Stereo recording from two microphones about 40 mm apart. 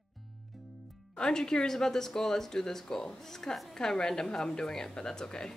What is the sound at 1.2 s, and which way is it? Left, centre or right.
A woman's voice, centre.